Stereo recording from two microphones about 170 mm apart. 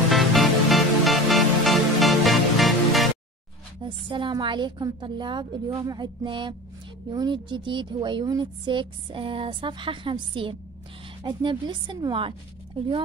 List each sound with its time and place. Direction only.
0.1 s music: centre (ahead or behind)
3.8 s a woman's voice: 30° right (ahead or behind)